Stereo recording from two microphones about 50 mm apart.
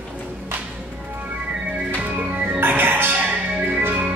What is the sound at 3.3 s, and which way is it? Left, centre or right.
Music, right.